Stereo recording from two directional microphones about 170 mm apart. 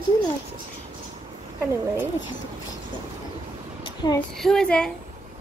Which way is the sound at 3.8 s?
25° left (ahead or behind).